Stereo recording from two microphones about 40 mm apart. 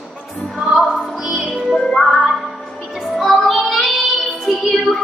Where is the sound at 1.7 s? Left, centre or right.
Centre.